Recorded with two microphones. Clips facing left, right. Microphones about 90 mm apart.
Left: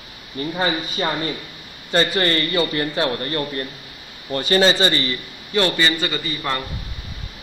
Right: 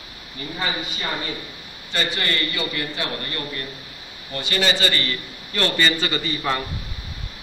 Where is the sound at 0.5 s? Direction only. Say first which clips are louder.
Left 4 dB; 40° left (ahead or behind); by 5.7 s 25° left (ahead or behind).